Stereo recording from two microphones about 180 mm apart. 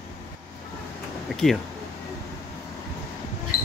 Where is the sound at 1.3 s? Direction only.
Centre (ahead or behind).